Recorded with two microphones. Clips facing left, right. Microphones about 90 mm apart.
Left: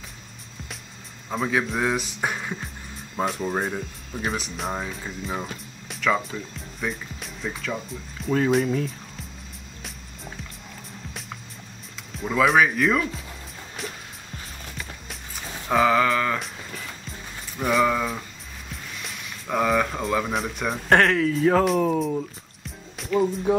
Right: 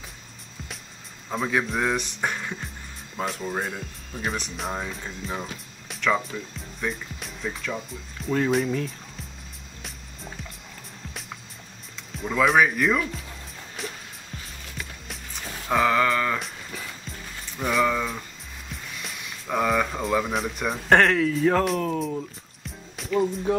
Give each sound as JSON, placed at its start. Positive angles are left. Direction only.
{"t": 1.3, "sound": "speech", "side_deg": 0}
{"t": 3.6, "sound": "speech", "side_deg": 0}
{"t": 12.2, "sound": "speech", "side_deg": 0}
{"t": 13.8, "sound": "music", "side_deg": 0}
{"t": 17.6, "sound": "speech", "side_deg": 5}
{"t": 22.9, "sound": "music", "side_deg": 0}